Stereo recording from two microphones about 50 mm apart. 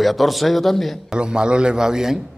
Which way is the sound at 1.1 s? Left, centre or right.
Centre.